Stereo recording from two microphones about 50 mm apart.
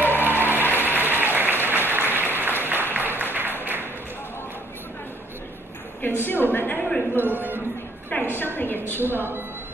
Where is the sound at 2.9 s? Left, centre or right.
Right.